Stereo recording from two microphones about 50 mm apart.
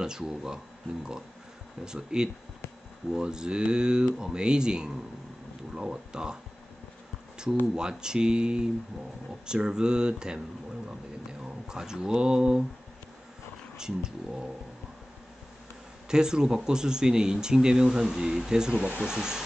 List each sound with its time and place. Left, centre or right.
0.0 s speech: centre
1.9 s speech: centre
7.7 s speech: centre
11.4 s speech: centre
13.7 s speech: centre
16.1 s speech: centre